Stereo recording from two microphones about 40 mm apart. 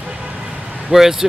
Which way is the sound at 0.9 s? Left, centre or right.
Centre.